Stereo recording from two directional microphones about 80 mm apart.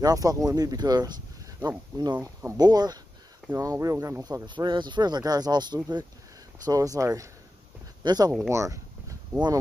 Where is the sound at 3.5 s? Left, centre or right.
Right.